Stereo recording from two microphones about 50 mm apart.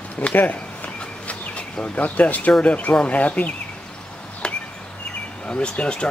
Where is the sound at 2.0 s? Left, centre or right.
Left.